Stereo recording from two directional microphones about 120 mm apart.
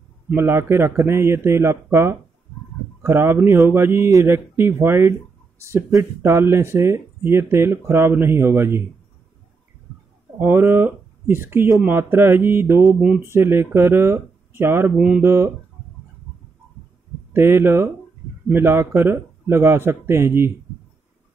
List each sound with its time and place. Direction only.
0.3 s speech: 20° right (ahead or behind)
10.4 s speech: 20° right (ahead or behind)
12.8 s a sound: 10° right (ahead or behind)
13.2 s speech: 20° right (ahead or behind)
15.2 s speech: 20° right (ahead or behind)
17.3 s speech: 20° right (ahead or behind)